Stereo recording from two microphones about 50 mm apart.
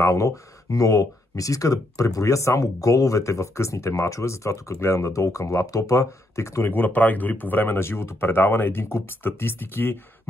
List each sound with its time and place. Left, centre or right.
0.0 s speech: left
6.6 s speech: left